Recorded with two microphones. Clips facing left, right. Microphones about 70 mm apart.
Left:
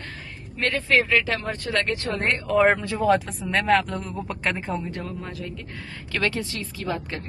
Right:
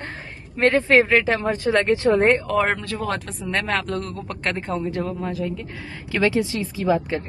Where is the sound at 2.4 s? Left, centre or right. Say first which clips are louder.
Left 2 dB; centre.